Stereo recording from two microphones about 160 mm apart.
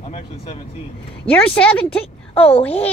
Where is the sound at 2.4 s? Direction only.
35° left (ahead or behind).